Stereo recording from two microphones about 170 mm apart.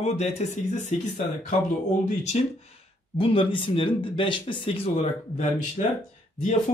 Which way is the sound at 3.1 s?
30° left (ahead or behind).